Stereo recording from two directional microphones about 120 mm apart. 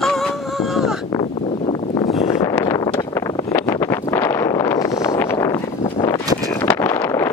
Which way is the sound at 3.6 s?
25° left (ahead or behind).